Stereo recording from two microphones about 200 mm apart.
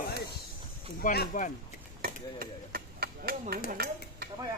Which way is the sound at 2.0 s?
50° right (ahead or behind).